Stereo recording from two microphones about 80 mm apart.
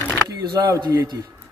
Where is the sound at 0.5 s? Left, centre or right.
Right.